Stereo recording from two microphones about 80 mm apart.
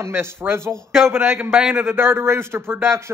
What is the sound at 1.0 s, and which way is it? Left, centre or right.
A man's voice, right.